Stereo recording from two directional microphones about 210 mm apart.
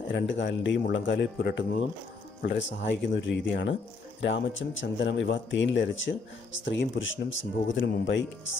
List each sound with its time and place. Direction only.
0.1 s speech: 60° left (ahead or behind)